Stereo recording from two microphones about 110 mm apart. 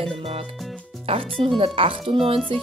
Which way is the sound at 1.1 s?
60° right (ahead or behind).